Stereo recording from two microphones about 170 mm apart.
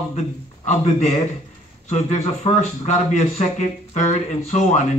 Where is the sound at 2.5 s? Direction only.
35° left (ahead or behind).